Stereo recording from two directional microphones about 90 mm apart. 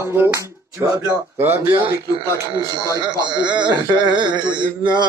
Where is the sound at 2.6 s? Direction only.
45° right (ahead or behind).